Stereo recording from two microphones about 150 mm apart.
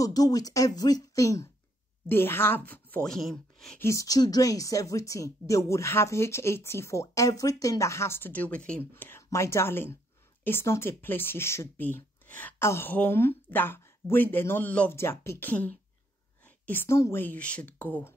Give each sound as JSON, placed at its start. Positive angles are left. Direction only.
{"t": 0.0, "sound": "a woman's voice", "side_deg": 25}
{"t": 3.8, "sound": "a woman's voice", "side_deg": 20}